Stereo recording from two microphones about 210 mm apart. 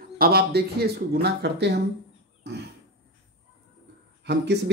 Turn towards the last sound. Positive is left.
turn(degrees=-55)  # may be behind; listen again after turning